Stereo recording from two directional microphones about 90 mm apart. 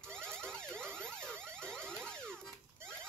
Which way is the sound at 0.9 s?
25° right (ahead or behind).